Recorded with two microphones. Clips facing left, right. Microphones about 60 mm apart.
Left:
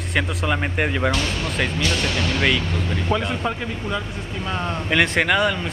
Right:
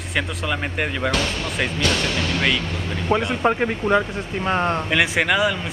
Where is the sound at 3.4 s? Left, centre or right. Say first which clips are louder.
Right 6 dB; right.